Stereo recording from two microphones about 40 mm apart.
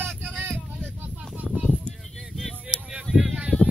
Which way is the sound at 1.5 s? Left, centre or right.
Right.